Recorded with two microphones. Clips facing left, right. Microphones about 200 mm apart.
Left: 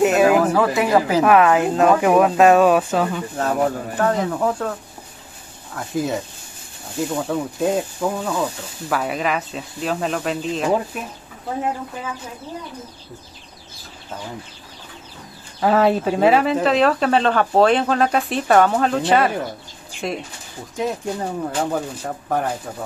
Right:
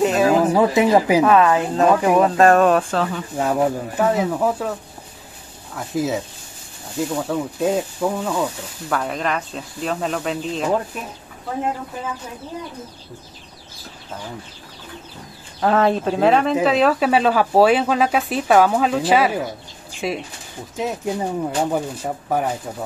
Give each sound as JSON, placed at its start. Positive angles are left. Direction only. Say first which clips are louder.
{"t": 0.0, "sound": "a sound", "louder": "left 2 dB", "side_deg": 5}
{"t": 0.3, "sound": "speech", "louder": "right 1 dB", "side_deg": -20}
{"t": 1.2, "sound": "speech", "louder": "left 1 dB", "side_deg": 15}
{"t": 1.8, "sound": "speech", "louder": "even", "side_deg": 5}
{"t": 3.3, "sound": "speech", "louder": "right 2 dB", "side_deg": -10}
{"t": 5.8, "sound": "speech", "louder": "right 1 dB", "side_deg": 0}
{"t": 15.6, "sound": "speech", "louder": "left 1 dB", "side_deg": 5}